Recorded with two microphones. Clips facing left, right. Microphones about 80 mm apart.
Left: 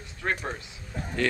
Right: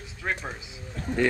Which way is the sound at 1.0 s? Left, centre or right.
Centre.